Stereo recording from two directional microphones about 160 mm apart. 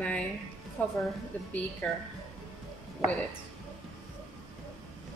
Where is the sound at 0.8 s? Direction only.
10° left (ahead or behind).